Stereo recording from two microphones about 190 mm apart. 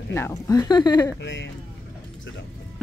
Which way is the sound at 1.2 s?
70° left (ahead or behind).